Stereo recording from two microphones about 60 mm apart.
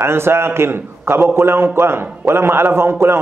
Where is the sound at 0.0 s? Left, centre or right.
Right.